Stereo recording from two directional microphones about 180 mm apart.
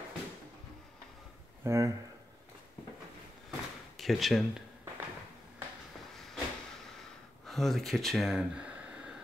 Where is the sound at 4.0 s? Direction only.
Centre (ahead or behind).